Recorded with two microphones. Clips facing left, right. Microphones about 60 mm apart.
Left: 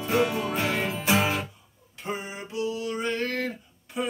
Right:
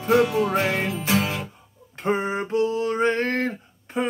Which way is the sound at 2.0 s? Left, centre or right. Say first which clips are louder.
Right 10 dB; right.